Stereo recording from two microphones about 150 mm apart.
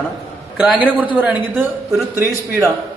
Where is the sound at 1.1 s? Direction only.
10° right (ahead or behind).